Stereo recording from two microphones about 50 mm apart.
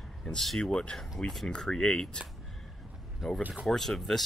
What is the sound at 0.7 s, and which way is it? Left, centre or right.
Speech, centre.